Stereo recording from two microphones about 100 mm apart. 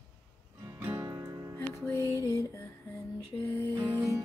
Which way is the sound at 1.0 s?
40° right (ahead or behind).